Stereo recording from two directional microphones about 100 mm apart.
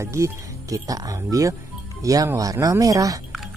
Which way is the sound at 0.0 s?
30° right (ahead or behind).